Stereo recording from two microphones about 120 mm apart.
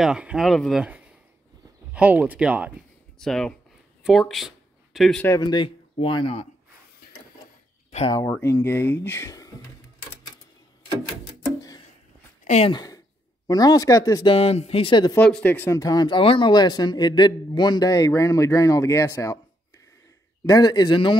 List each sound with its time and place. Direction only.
0.0 s speech: 5° right (ahead or behind)
0.8 s a sound: 15° right (ahead or behind)
2.0 s speech: 10° right (ahead or behind)
3.2 s speech: 5° left (ahead or behind)
4.0 s a sound: centre (ahead or behind)
5.4 s speech: 40° left (ahead or behind)
8.1 s speech: 25° left (ahead or behind)
12.4 s speech: 60° left (ahead or behind)
12.7 s a man's voice: 30° left (ahead or behind)
14.2 s speech: 55° left (ahead or behind)
15.1 s speech: 10° left (ahead or behind)
15.8 s a man's voice: 35° left (ahead or behind)
16.2 s a man's voice: 45° left (ahead or behind); by 19.4 s 25° left (ahead or behind)
20.4 s a man's voice: 35° left (ahead or behind)